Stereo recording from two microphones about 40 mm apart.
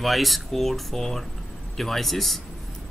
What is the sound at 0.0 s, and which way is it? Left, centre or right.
Speech, centre.